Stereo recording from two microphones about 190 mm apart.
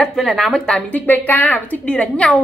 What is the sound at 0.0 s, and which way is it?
A woman's voice, centre (ahead or behind).